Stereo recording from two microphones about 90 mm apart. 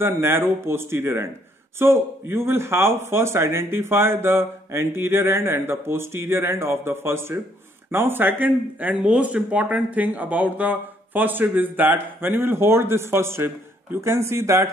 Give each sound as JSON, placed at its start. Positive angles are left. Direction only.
{"t": 0.0, "sound": "speech", "side_deg": -25}